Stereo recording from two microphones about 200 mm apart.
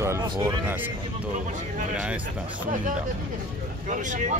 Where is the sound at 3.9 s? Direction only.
40° right (ahead or behind).